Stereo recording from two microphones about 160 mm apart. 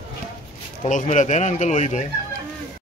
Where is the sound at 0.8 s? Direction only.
50° left (ahead or behind).